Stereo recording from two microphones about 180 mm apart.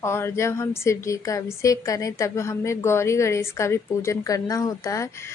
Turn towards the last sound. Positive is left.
turn(degrees=15)  # may be behind; listen again after turning